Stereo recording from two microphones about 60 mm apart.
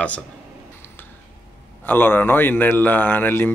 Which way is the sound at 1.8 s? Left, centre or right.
Left.